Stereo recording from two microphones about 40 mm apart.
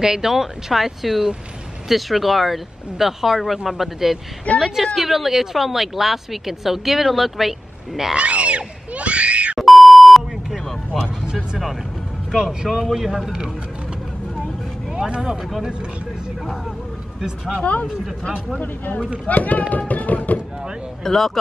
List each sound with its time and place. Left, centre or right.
0.0 s speech: centre
8.2 s screaming: right
9.6 s beep: centre
12.4 s speech: centre
12.9 s speech: centre
15.0 s speech: right
19.2 s speech: left
21.0 s speech: centre